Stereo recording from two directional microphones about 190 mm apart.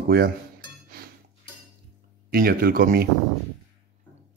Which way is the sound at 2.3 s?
50° right (ahead or behind).